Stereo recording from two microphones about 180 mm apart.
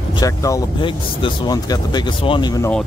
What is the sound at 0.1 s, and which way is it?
Speech, 20° left (ahead or behind).